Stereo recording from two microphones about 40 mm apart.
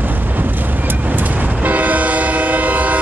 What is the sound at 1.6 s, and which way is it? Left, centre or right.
Train, right.